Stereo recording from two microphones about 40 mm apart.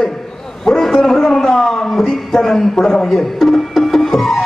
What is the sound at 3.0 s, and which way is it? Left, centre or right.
Music, centre.